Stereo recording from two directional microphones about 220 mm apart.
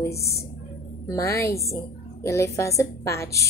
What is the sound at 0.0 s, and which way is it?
A woman's voice, 15° left (ahead or behind).